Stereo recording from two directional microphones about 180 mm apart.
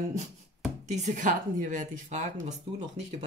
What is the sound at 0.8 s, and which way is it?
A woman's voice, 40° right (ahead or behind).